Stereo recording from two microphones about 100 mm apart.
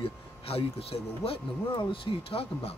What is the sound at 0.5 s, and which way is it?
Speech, 75° left (ahead or behind).